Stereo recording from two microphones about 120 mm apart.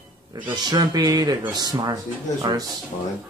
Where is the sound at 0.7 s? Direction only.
35° right (ahead or behind).